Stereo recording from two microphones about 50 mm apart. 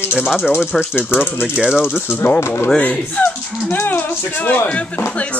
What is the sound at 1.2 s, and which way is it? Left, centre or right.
Speech, left.